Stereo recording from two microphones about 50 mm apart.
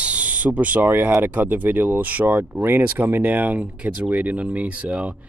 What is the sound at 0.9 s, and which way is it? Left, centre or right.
Speech, right.